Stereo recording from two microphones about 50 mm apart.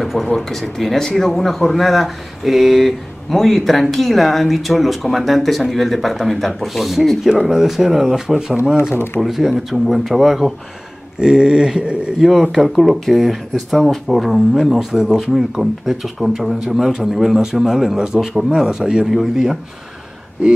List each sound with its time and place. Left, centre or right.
0.0 s a sound: centre
0.4 s speech: centre
8.7 s speech: left
9.2 s speech: centre
11.1 s a man's voice: centre
12.2 s a man's voice: centre